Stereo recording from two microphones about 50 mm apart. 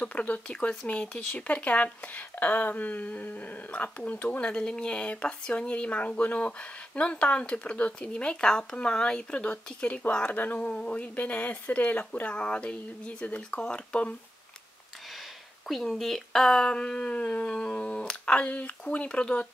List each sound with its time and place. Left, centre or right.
0.0 s speech: left
15.9 s speech: centre; by 19.4 s left